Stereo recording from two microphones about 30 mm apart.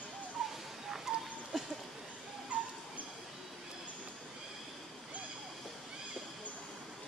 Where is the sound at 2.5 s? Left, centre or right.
Right.